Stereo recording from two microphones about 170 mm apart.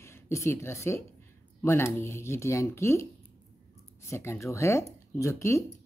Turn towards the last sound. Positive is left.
turn(degrees=15)  # may be behind; listen again after turning